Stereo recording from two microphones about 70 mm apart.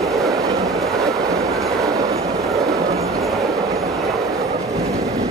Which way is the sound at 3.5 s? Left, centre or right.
Right.